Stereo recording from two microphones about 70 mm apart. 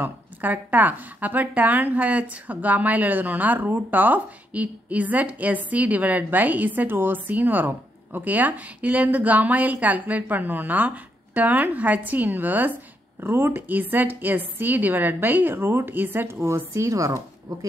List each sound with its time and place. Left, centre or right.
0.0 s speech: right